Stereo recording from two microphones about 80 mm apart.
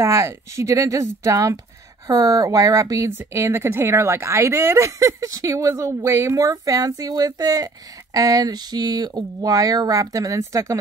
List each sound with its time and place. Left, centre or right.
0.0 s speech: right